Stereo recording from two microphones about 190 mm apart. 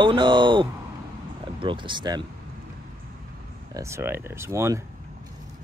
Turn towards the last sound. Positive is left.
turn(degrees=-15)  # may be behind; listen again after turning